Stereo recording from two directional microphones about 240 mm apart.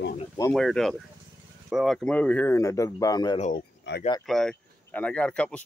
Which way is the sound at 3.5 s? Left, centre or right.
Left.